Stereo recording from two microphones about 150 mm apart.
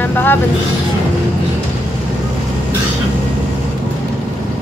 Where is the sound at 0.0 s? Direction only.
15° left (ahead or behind).